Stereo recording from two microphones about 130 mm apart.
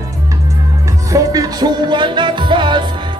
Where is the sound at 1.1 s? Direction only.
30° right (ahead or behind).